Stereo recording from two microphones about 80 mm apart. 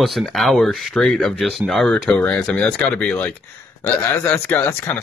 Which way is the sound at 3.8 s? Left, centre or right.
Left.